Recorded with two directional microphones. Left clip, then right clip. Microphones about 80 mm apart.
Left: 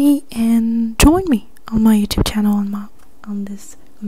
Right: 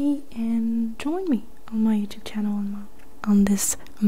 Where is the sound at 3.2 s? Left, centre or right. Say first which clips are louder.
Right 7 dB; right.